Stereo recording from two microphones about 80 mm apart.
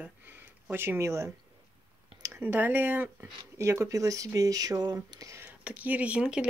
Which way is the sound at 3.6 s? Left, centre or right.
Right.